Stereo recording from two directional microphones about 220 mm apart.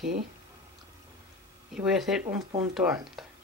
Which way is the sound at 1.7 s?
5° right (ahead or behind).